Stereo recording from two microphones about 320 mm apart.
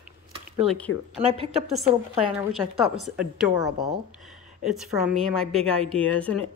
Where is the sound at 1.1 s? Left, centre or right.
Centre.